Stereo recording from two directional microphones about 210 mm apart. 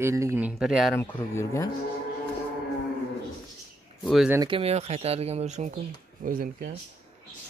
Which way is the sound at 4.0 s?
Centre (ahead or behind).